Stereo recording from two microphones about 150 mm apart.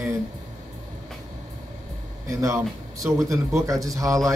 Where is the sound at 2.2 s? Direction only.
20° right (ahead or behind).